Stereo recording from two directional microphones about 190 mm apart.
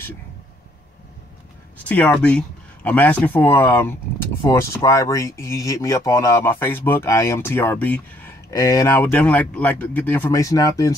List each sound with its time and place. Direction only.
1.9 s speech: 5° left (ahead or behind)